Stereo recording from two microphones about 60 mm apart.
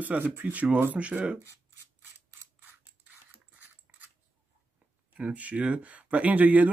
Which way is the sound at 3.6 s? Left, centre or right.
Right.